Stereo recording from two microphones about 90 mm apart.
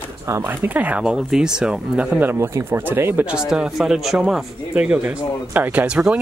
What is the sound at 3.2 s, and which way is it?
Speech, 10° right (ahead or behind).